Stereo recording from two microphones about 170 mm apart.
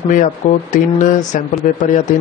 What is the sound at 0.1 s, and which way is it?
Speech, 50° left (ahead or behind).